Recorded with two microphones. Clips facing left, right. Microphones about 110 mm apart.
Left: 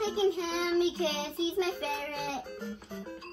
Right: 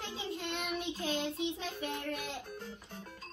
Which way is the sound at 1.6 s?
90° left.